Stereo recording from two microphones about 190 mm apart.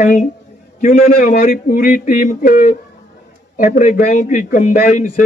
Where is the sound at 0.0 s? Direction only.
40° left (ahead or behind).